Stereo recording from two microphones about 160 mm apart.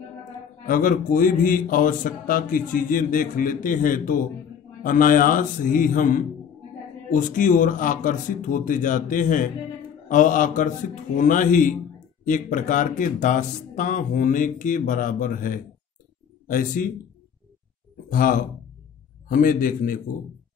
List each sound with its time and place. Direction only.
0.7 s speech: 60° left (ahead or behind)
18.1 s speech: 60° left (ahead or behind)